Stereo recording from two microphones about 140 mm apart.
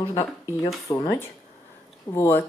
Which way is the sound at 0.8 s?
25° left (ahead or behind).